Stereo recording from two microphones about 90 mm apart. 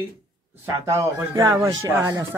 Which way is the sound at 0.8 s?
35° right (ahead or behind).